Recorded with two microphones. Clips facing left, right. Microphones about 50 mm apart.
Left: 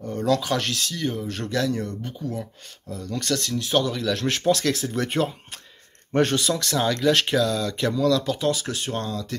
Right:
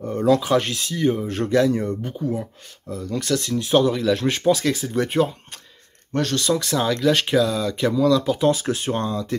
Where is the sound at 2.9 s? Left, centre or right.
Centre.